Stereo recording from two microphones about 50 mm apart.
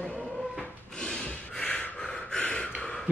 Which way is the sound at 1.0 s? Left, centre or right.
Centre.